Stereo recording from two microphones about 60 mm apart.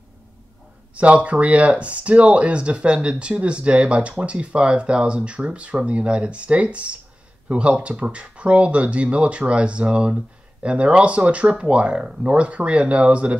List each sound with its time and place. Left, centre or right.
0.9 s speech: right